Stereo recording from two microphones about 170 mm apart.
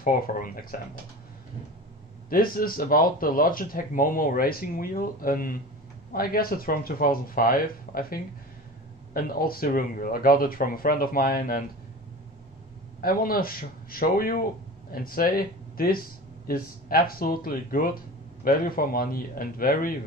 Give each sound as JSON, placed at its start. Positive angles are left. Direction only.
{"t": 0.0, "sound": "speech", "side_deg": 55}
{"t": 2.2, "sound": "speech", "side_deg": 60}
{"t": 13.0, "sound": "speech", "side_deg": 60}